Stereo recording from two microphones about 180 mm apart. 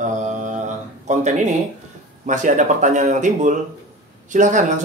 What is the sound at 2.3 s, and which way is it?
A man's voice, 45° right (ahead or behind).